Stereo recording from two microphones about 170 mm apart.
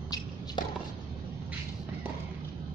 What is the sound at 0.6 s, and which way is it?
Chopping, 25° left (ahead or behind).